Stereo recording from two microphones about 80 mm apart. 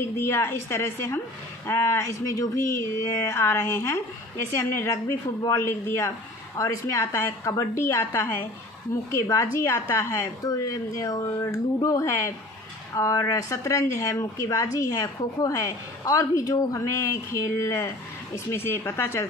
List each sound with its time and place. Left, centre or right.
0.2 s speech: left
6.6 s a woman's voice: left
7.0 s a woman's voice: left
7.4 s a woman's voice: left
10.1 s a woman's voice: left